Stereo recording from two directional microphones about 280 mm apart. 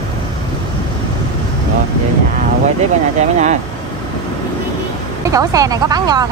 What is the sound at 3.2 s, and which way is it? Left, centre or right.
Speech, right.